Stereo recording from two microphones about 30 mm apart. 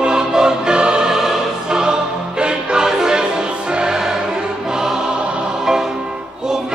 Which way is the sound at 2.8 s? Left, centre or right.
Centre.